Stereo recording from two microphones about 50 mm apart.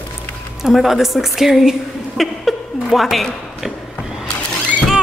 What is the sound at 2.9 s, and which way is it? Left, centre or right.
Speech, centre.